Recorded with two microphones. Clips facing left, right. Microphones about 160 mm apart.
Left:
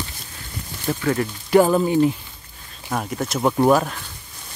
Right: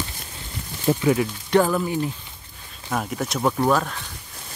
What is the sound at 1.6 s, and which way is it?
Speech, 25° left (ahead or behind).